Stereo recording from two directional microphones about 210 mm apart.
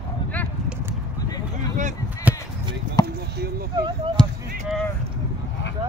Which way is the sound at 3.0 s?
15° left (ahead or behind).